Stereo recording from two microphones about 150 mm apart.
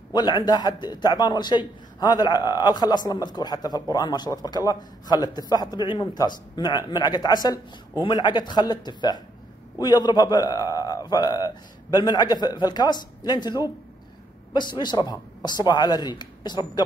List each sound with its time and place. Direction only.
0.1 s a man's voice: 30° left (ahead or behind)